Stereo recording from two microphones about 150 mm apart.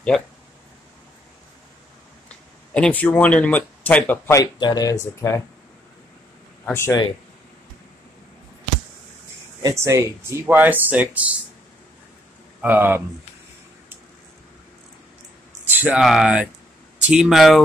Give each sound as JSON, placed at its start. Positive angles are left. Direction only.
{"t": 2.2, "sound": "speech", "side_deg": 5}
{"t": 4.4, "sound": "speech", "side_deg": 25}
{"t": 6.6, "sound": "speech", "side_deg": 15}
{"t": 9.6, "sound": "speech", "side_deg": -25}
{"t": 12.6, "sound": "speech", "side_deg": -10}
{"t": 15.7, "sound": "speech", "side_deg": -10}